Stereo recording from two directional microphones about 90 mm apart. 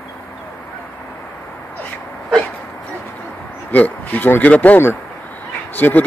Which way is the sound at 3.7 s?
20° left (ahead or behind).